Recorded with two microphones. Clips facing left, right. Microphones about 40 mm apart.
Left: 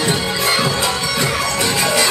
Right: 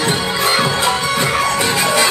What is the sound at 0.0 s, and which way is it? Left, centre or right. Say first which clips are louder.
Music: right 1 dB; centre.